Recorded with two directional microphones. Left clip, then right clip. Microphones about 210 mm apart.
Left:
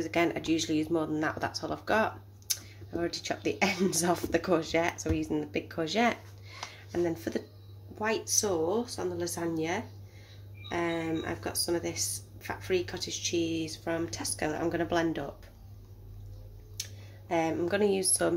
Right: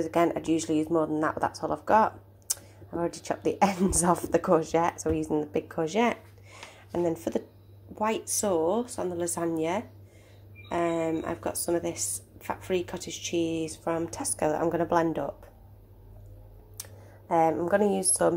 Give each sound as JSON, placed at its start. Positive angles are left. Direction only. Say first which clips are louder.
{"t": 0.0, "sound": "a woman's voice", "louder": "right 4 dB", "side_deg": -10}
{"t": 5.9, "sound": "a sound", "louder": "left 1 dB", "side_deg": -10}
{"t": 8.0, "sound": "a woman's voice", "louder": "right 1 dB", "side_deg": -20}
{"t": 17.3, "sound": "a woman's voice", "louder": "right 6 dB", "side_deg": 0}